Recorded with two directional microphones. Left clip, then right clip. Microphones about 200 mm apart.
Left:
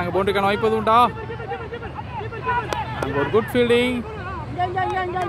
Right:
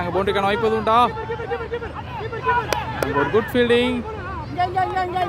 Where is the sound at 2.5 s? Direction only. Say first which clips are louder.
Right 3 dB; 45° right (ahead or behind).